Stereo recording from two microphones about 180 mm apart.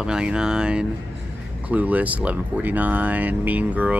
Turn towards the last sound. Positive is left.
turn(degrees=-10)  # may be behind; listen again after turning